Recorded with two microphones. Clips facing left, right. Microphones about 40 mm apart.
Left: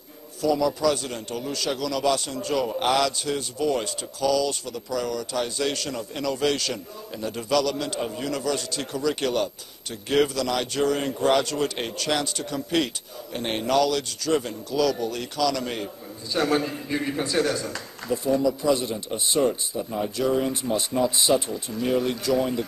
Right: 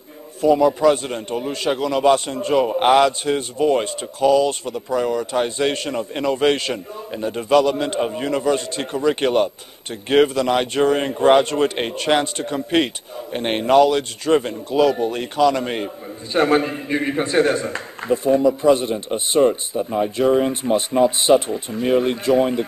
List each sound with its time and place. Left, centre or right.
0.4 s a man's voice: right